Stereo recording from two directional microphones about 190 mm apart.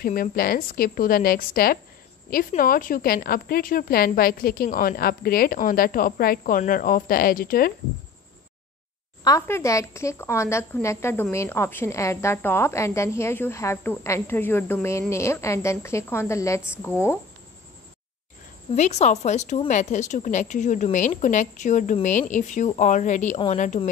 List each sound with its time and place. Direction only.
0.0 s a woman's voice: 50° left (ahead or behind)
9.2 s speech: 15° left (ahead or behind)
18.8 s speech: 35° left (ahead or behind)